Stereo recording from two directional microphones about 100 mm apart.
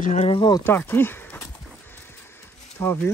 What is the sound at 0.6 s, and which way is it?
Speech, 20° left (ahead or behind).